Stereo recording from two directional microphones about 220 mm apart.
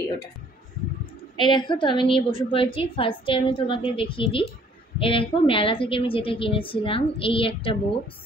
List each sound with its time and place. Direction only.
1.3 s a woman's voice: 20° left (ahead or behind)